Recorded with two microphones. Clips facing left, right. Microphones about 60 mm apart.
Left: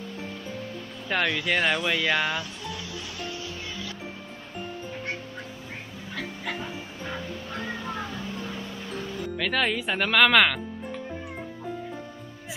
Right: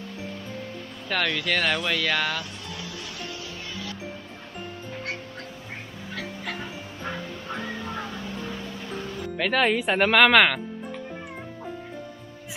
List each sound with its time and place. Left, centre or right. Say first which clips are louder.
1.0 s speech: even; centre
6.1 s dog: left 1 dB; centre
9.4 s speech: right 4 dB; centre